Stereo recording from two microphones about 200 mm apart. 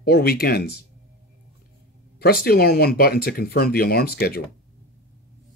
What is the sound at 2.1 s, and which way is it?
Speech, 50° left (ahead or behind).